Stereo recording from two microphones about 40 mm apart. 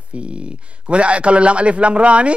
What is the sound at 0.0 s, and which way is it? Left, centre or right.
A man's voice, right.